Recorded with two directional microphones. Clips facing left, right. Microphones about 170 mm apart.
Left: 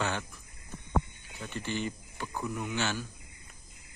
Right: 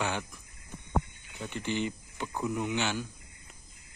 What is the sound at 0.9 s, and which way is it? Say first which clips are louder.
A man's voice: even; 15° right (ahead or behind).